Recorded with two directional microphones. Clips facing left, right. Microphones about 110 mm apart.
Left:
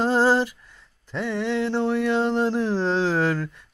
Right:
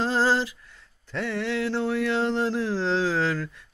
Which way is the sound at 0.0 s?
15° left (ahead or behind).